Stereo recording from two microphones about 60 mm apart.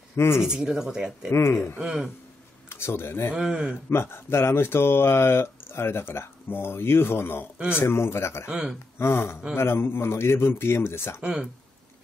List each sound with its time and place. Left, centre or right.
0.1 s speech: left
0.4 s speech: centre
1.3 s a man's voice: left
1.8 s speech: centre
2.7 s speech: left
7.5 s speech: centre
7.8 s a man's voice: left
8.5 s speech: centre
8.9 s a man's voice: left
11.1 s speech: centre